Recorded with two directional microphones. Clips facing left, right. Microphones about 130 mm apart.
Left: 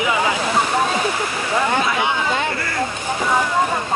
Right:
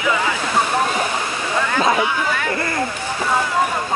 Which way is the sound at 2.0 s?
25° left (ahead or behind).